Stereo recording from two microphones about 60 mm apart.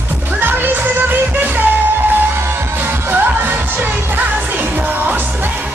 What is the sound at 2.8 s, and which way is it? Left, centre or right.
Music, right.